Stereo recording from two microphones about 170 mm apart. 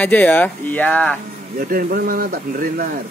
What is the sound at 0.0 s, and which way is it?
Speech, 10° left (ahead or behind).